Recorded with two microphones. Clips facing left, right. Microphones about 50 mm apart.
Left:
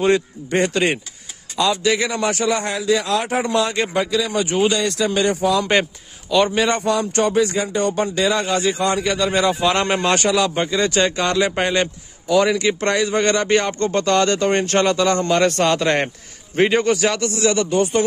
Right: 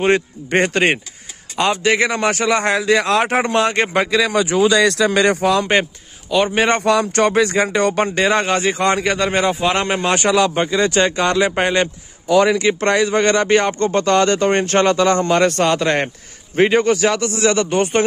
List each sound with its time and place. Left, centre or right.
0.5 s a man's voice: right
6.3 s a man's voice: centre
6.8 s speech: right
8.1 s a man's voice: right
9.8 s a man's voice: centre
10.3 s speech: right
15.4 s a man's voice: centre
17.4 s a man's voice: right